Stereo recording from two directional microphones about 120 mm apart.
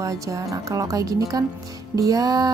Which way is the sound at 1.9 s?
30° right (ahead or behind).